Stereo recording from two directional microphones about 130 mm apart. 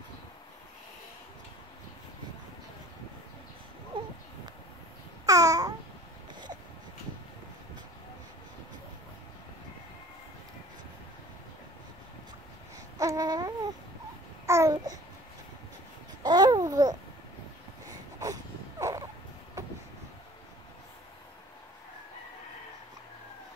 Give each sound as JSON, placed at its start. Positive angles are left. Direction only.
{"t": 3.9, "sound": "a sound", "side_deg": -40}
{"t": 5.2, "sound": "babbling", "side_deg": -25}
{"t": 13.0, "sound": "baby cry", "side_deg": -25}
{"t": 14.4, "sound": "babbling", "side_deg": -20}
{"t": 16.2, "sound": "babbling", "side_deg": -35}
{"t": 17.8, "sound": "a sound", "side_deg": -25}
{"t": 19.6, "sound": "vehicle", "side_deg": -25}